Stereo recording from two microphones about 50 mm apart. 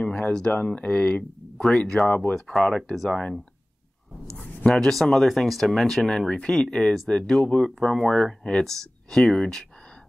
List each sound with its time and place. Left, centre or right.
0.0 s a sound: centre
0.5 s speech: left
1.6 s speech: centre
2.0 s speech: left
2.3 s speech: centre
4.7 s speech: centre
9.2 s speech: centre